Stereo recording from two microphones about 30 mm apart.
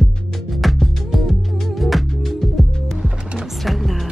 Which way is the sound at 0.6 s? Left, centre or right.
Centre.